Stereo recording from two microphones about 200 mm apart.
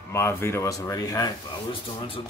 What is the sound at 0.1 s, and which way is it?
Speech, 15° left (ahead or behind).